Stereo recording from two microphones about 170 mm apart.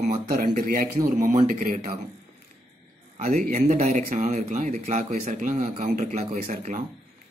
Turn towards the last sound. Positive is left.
turn(degrees=-45)  # may be behind; listen again after turning